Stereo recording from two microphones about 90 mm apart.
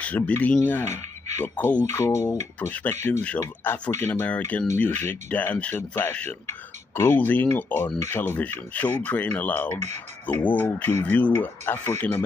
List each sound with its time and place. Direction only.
0.0 s speech: 15° left (ahead or behind)
1.9 s speech: 30° left (ahead or behind)
2.7 s speech: 20° left (ahead or behind)
7.2 s speech: 20° left (ahead or behind)